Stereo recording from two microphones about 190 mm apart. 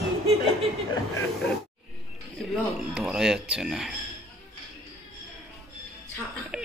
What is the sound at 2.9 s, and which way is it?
Speech, 5° right (ahead or behind).